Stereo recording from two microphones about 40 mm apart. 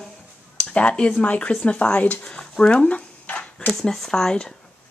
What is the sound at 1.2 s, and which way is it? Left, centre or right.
Speech, left.